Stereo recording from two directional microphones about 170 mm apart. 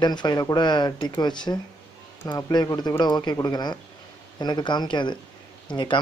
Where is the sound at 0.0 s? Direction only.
25° left (ahead or behind).